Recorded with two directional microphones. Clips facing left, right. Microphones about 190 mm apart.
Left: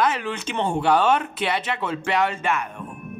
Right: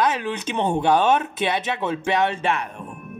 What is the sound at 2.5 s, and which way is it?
Speech, 35° right (ahead or behind).